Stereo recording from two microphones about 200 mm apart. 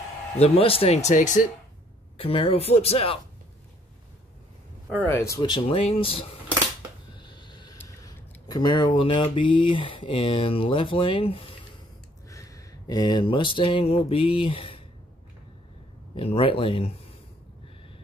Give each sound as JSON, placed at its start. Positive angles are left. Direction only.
{"t": 0.4, "sound": "speech", "side_deg": 30}
{"t": 4.8, "sound": "speech", "side_deg": 10}
{"t": 7.2, "sound": "a sound", "side_deg": 20}
{"t": 7.7, "sound": "speech", "side_deg": 15}
{"t": 12.3, "sound": "a sound", "side_deg": 15}
{"t": 16.2, "sound": "speech", "side_deg": 25}